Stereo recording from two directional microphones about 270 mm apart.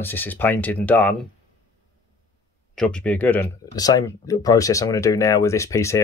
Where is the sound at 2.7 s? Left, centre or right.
Centre.